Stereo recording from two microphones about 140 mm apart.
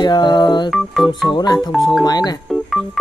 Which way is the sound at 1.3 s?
30° left (ahead or behind).